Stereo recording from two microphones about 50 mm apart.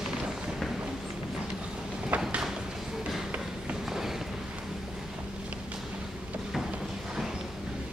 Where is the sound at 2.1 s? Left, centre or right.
Right.